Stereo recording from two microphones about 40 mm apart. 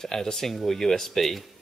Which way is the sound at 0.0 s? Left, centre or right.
Centre.